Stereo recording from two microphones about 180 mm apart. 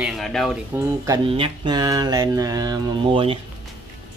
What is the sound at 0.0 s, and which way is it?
Speech, centre (ahead or behind).